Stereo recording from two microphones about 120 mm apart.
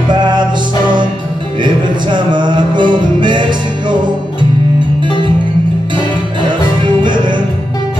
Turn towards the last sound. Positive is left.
turn(degrees=-40)  # may be behind; listen again after turning